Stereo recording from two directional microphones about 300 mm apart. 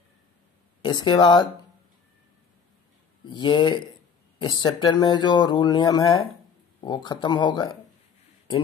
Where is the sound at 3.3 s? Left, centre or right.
Centre.